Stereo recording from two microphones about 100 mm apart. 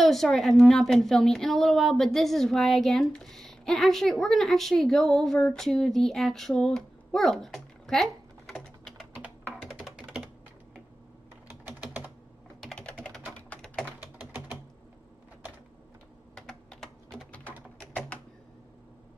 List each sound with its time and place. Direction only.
0.0 s a woman's voice: centre (ahead or behind)
9.5 s computer keyboard: 5° right (ahead or behind)
11.6 s typing: 20° right (ahead or behind)
13.8 s typing: 15° right (ahead or behind)
16.3 s typing: 5° left (ahead or behind)